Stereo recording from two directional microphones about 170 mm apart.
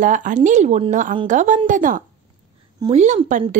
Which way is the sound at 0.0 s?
50° right (ahead or behind).